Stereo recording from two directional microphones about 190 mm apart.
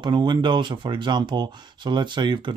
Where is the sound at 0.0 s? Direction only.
25° right (ahead or behind).